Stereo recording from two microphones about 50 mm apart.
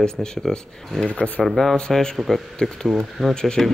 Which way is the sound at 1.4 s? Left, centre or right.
Centre.